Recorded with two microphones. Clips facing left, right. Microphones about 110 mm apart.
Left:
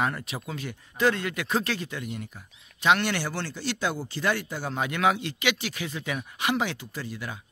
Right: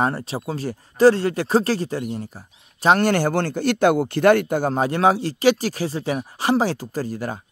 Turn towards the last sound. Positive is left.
turn(degrees=-40)  # may be behind; listen again after turning